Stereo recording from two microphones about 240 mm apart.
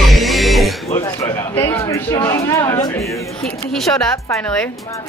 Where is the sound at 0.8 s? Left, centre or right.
Left.